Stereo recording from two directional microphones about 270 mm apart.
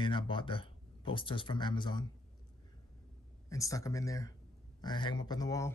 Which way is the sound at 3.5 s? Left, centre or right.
Centre.